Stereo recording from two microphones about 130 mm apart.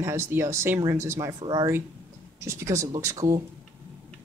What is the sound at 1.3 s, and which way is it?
Speech, 35° right (ahead or behind).